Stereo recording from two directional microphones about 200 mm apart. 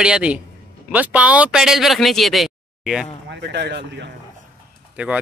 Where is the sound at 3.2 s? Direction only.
60° right (ahead or behind).